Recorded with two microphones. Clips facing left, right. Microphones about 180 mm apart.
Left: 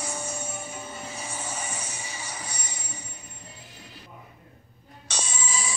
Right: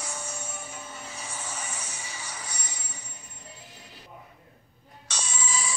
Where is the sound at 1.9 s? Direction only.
15° left (ahead or behind).